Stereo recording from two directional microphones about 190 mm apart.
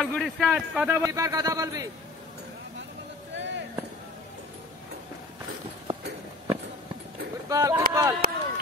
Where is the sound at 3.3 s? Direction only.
70° right (ahead or behind).